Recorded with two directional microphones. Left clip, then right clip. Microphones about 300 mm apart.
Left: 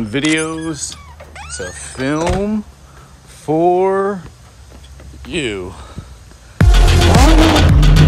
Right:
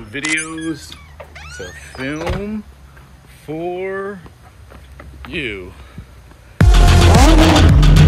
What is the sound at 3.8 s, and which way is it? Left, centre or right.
Speech, centre.